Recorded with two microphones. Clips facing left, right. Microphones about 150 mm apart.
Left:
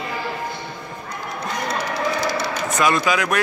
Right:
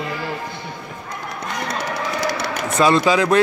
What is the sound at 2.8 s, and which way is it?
Speech, 30° right (ahead or behind).